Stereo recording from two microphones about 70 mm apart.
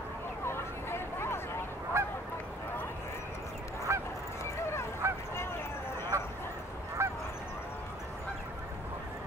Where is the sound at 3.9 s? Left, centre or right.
Right.